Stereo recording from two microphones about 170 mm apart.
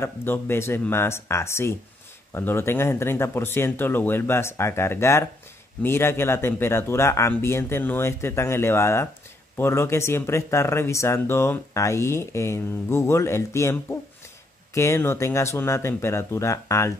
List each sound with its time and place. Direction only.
0.0 s speech: 15° left (ahead or behind)